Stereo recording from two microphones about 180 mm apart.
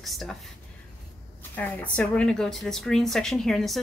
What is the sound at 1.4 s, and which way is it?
A woman's voice, 10° left (ahead or behind).